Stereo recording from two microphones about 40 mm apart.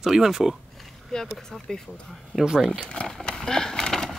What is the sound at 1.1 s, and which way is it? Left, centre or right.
Speech, centre.